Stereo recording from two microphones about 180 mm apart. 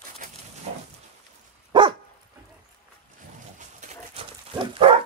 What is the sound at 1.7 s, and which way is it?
Dog, 25° right (ahead or behind).